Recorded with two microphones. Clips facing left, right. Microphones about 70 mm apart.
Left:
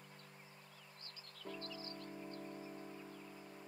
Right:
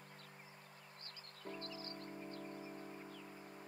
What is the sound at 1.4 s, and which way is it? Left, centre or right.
Music, right.